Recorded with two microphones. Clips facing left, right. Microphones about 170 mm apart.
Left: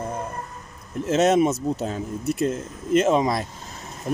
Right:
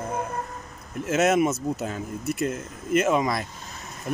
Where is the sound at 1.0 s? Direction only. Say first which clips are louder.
Left 3 dB; 35° left (ahead or behind).